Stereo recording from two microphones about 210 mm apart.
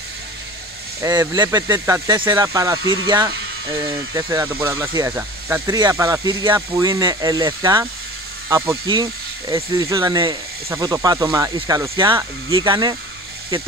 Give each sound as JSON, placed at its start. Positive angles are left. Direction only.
{"t": 1.0, "sound": "speech", "side_deg": -15}